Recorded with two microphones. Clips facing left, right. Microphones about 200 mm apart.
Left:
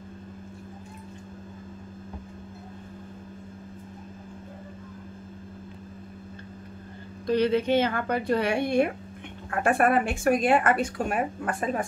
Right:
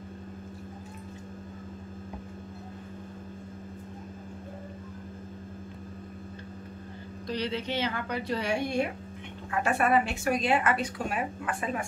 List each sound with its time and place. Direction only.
7.2 s speech: 55° left (ahead or behind)